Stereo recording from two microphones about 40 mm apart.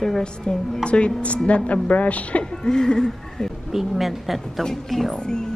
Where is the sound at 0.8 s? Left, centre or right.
Left.